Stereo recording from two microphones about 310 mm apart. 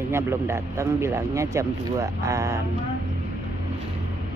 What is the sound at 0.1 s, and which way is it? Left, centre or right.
A woman's voice, centre.